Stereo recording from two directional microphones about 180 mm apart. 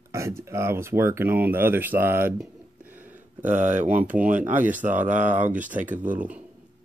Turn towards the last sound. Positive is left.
turn(degrees=-45)  # may be behind; listen again after turning